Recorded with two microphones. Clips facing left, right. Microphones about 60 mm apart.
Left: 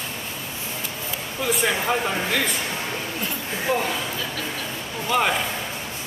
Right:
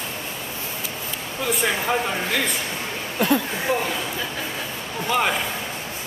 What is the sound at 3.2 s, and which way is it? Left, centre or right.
Speech, right.